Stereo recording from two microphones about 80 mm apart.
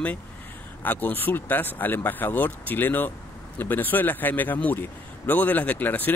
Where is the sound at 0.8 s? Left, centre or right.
Left.